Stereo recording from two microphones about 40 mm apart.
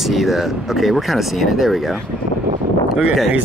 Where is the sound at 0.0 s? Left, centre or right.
Centre.